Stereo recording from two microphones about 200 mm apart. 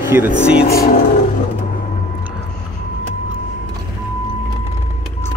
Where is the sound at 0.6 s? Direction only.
50° left (ahead or behind).